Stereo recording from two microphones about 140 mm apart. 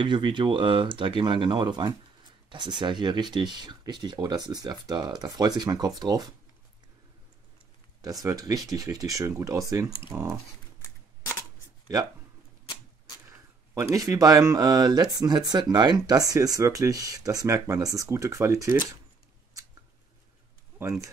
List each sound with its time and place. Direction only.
0.0 s speech: 35° right (ahead or behind)
8.0 s speech: 25° right (ahead or behind)
13.7 s speech: 25° right (ahead or behind)